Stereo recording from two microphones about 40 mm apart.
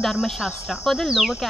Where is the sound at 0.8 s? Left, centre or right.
Centre.